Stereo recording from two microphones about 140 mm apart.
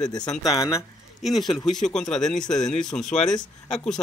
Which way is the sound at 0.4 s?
25° left (ahead or behind).